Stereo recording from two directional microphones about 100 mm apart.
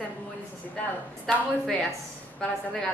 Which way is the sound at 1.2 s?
Centre (ahead or behind).